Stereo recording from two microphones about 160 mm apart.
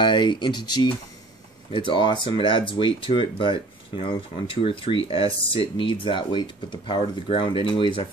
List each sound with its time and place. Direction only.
0.0 s speech: 30° left (ahead or behind)